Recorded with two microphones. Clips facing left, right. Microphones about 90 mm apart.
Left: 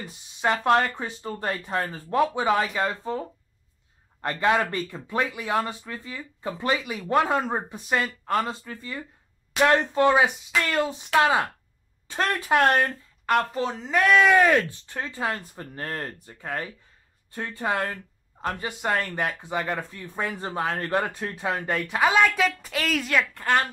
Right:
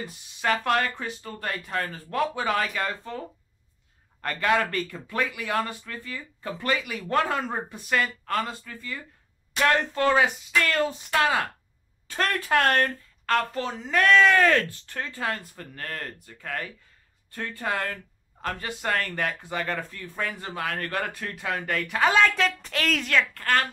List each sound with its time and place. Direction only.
0.4 s speech: 20° left (ahead or behind)
22.0 s speech: 10° left (ahead or behind)